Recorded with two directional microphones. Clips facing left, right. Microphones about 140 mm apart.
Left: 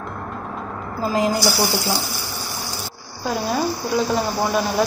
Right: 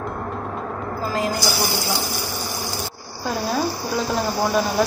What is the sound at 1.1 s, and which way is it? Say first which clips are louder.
Speech: left 4 dB; 20° left (ahead or behind).